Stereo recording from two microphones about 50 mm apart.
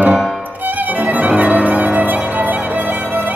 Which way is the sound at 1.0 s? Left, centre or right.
Right.